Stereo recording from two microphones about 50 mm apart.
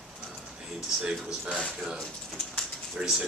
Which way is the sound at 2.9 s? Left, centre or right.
Centre.